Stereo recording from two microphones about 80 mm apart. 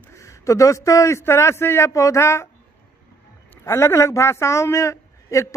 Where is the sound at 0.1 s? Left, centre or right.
Left.